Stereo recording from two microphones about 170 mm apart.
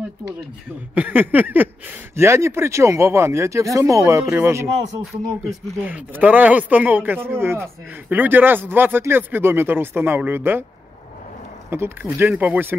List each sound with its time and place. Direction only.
0.9 s speech: 10° right (ahead or behind)
5.9 s speech: 10° right (ahead or behind)
11.7 s speech: 15° right (ahead or behind)